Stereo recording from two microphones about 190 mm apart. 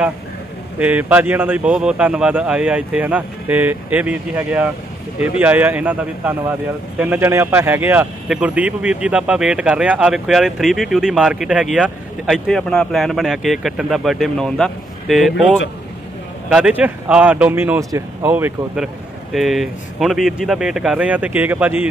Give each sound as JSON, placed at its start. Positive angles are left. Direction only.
{"t": 0.7, "sound": "speech", "side_deg": -5}
{"t": 16.4, "sound": "speech", "side_deg": -5}